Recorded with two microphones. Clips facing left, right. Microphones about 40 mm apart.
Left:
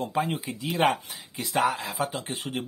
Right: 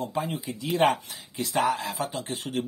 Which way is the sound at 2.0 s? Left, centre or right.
Left.